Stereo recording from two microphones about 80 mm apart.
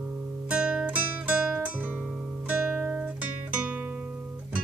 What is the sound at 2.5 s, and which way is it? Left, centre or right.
Music, centre.